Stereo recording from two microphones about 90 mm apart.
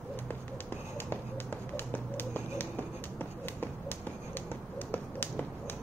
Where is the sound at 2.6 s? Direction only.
20° left (ahead or behind).